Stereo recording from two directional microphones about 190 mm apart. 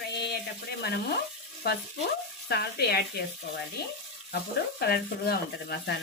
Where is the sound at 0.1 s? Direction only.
60° left (ahead or behind).